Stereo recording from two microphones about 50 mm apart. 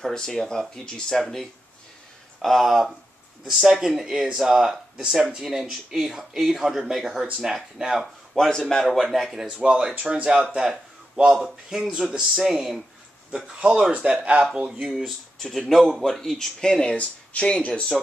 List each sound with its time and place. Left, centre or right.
0.0 s speech: centre
8.4 s speech: centre
9.1 s speech: centre
9.5 s speech: centre
14.9 s speech: centre
16.9 s speech: left